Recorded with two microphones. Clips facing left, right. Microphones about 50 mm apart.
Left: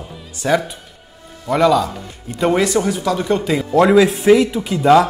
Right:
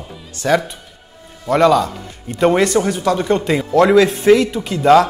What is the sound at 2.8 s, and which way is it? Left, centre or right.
A man's voice, centre.